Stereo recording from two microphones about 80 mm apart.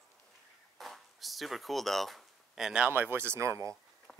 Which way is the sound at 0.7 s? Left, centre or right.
Centre.